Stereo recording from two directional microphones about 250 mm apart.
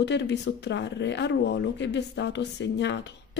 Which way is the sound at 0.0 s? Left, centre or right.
Left.